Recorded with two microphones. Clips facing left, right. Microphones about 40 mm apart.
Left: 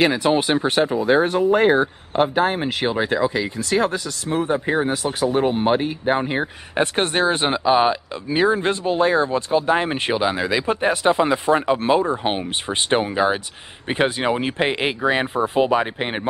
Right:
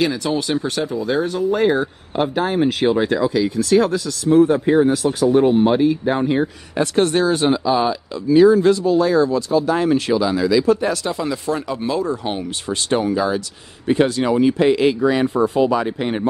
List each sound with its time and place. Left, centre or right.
0.0 s speech: left